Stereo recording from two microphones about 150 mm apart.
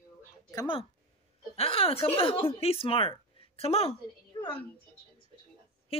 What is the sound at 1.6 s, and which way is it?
A woman's voice, 40° left (ahead or behind).